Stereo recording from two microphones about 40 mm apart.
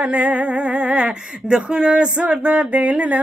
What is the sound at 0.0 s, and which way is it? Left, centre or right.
Female singing, right.